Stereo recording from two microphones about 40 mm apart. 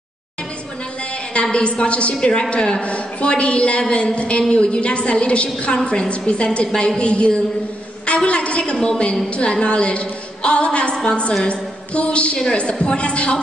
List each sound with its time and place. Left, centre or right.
1.3 s a woman's voice: left
11.4 s a sound: left
12.4 s a woman's voice: left